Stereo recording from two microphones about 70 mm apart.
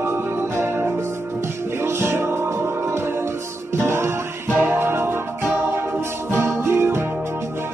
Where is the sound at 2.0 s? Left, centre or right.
Right.